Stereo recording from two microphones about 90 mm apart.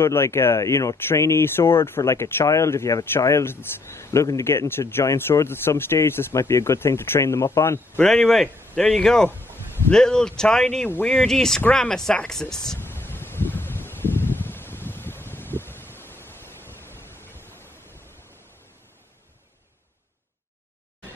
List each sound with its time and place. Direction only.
0.0 s speech: 30° left (ahead or behind)
8.1 s speech: 5° left (ahead or behind)
12.7 s a sound: 25° left (ahead or behind)